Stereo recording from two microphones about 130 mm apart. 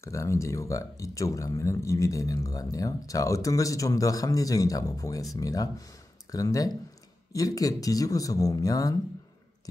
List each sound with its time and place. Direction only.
0.0 s speech: 20° left (ahead or behind)